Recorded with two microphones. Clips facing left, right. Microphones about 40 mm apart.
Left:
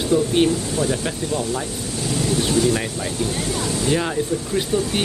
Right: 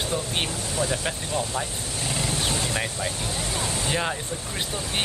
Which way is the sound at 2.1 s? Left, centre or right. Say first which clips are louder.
Left 8 dB; right.